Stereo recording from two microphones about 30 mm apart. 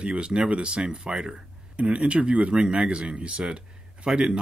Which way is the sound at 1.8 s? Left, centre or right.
Right.